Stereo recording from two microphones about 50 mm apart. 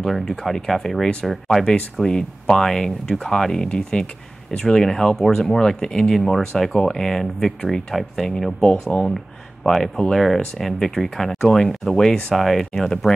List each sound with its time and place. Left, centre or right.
0.0 s speech: centre
2.0 s speech: centre